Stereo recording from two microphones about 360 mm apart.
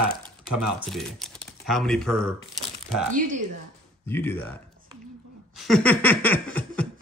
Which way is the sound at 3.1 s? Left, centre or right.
Right.